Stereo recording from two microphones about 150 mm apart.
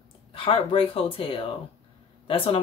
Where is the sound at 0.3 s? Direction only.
35° left (ahead or behind).